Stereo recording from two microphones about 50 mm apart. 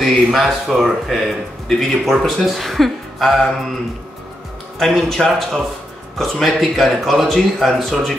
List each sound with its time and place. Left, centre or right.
0.0 s speech: centre
4.7 s speech: centre